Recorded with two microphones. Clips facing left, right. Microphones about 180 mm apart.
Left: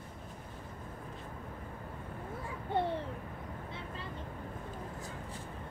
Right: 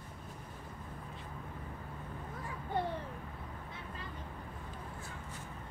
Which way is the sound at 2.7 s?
25° left (ahead or behind).